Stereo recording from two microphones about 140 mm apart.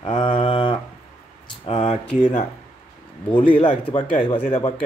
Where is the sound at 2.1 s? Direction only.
65° left (ahead or behind).